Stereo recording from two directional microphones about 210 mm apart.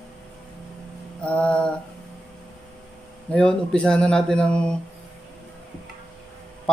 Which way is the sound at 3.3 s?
5° left (ahead or behind).